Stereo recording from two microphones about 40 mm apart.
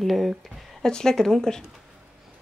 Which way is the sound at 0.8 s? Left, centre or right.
Centre.